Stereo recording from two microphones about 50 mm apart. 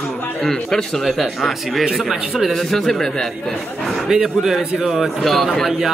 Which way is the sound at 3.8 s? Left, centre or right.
Centre.